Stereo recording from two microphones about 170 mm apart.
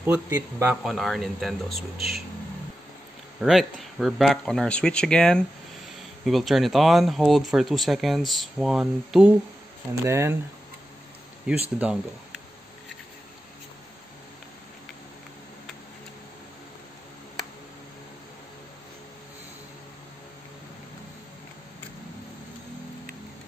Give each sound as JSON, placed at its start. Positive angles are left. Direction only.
{"t": 0.0, "sound": "speech", "side_deg": -10}
{"t": 0.8, "sound": "speech", "side_deg": 0}
{"t": 3.3, "sound": "speech", "side_deg": 0}
{"t": 10.0, "sound": "speech", "side_deg": -15}
{"t": 11.5, "sound": "speech", "side_deg": -5}